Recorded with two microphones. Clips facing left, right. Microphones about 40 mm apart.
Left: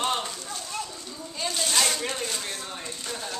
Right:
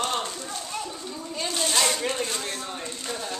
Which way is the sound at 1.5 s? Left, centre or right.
Centre.